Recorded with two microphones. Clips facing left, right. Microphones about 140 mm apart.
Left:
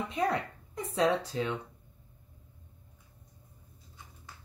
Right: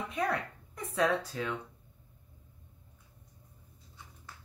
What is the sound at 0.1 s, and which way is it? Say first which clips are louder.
Speech: left 2 dB; 25° left (ahead or behind).